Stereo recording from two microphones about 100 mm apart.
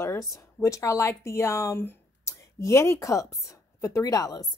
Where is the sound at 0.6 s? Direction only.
30° left (ahead or behind).